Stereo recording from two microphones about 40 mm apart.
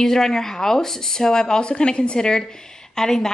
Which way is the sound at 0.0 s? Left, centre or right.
Centre.